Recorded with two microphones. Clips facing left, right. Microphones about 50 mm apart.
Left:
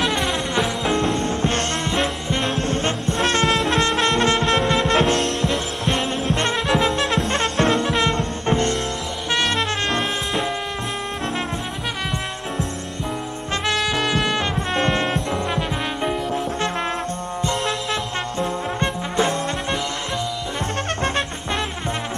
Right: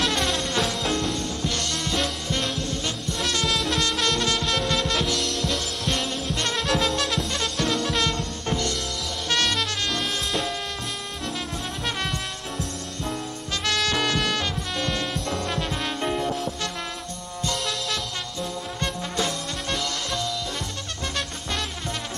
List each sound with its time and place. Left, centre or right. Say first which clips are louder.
0.0 s music: left 3 dB; centre
2.5 s music: left 7 dB; left
4.9 s music: left 7 dB; left
5.5 s music: left 5 dB; left
9.3 s music: left 3 dB; left
13.7 s brass instrument: left 2 dB; centre
14.7 s music: left 7 dB; left
15.2 s music: left 4 dB; centre
17.4 s music: left 4 dB; left